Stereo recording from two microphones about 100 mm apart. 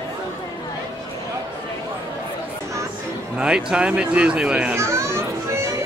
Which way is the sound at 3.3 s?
10° right (ahead or behind).